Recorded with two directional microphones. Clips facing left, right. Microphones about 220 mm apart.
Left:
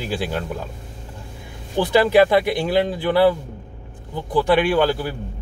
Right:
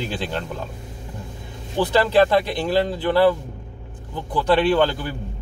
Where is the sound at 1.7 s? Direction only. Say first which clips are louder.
Left 2 dB; 15° left (ahead or behind).